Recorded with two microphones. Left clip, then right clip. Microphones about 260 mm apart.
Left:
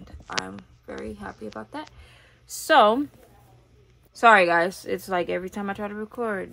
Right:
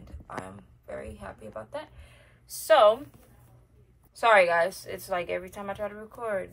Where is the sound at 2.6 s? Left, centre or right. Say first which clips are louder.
Left 2 dB; left.